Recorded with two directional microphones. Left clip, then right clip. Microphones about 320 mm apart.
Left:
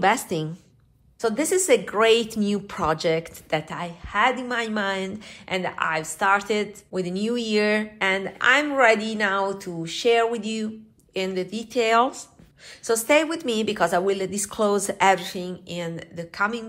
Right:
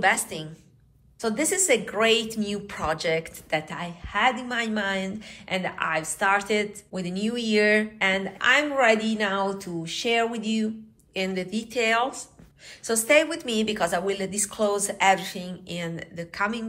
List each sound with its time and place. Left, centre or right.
0.0 s a woman's voice: centre